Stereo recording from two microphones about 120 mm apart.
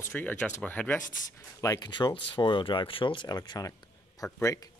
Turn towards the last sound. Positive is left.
turn(degrees=15)  # may be behind; listen again after turning